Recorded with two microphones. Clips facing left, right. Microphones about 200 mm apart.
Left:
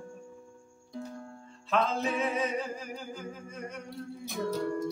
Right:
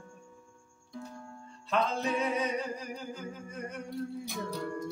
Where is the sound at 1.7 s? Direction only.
Centre (ahead or behind).